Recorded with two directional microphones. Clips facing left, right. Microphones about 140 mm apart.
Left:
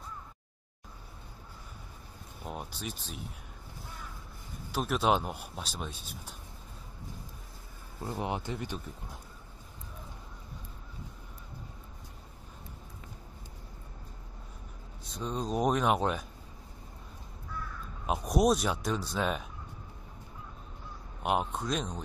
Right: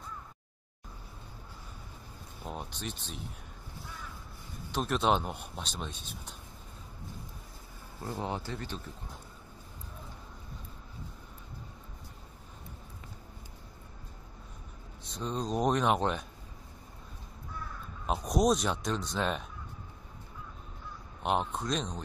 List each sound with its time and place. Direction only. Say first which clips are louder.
2.4 s a man's voice: even; 5° left (ahead or behind)
4.7 s a man's voice: even; 5° left (ahead or behind)
8.1 s speech: left 1 dB; 15° left (ahead or behind)
15.0 s a man's voice: even; centre (ahead or behind)
18.0 s a man's voice: left 1 dB; 5° left (ahead or behind)
21.2 s a man's voice: even; 5° left (ahead or behind)